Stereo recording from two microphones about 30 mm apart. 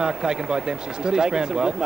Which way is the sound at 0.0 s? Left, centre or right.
Right.